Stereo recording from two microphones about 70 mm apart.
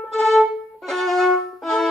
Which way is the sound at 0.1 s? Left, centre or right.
Centre.